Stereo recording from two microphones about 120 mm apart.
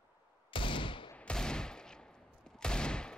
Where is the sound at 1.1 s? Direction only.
5° left (ahead or behind).